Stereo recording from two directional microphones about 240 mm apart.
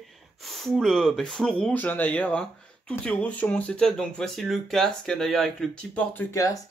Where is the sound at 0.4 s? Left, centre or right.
Centre.